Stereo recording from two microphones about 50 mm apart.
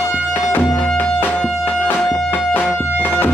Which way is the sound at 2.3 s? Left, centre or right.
Left.